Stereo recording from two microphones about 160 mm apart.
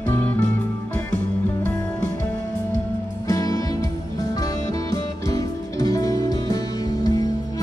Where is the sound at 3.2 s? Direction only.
20° left (ahead or behind).